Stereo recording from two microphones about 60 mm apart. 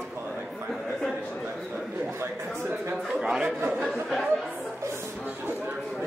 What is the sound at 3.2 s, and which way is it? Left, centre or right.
Speech, centre.